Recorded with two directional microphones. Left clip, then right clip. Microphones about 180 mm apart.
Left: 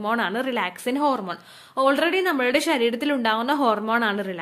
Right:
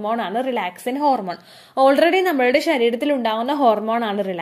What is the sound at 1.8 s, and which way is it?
A woman's voice, 15° right (ahead or behind).